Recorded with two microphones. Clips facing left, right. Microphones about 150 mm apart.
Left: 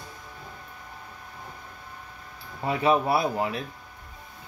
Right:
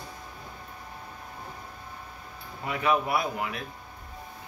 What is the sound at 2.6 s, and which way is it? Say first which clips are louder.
Speech: left 4 dB; 30° left (ahead or behind).